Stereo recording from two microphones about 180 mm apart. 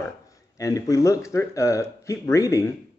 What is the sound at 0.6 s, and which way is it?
A man's voice, 20° left (ahead or behind).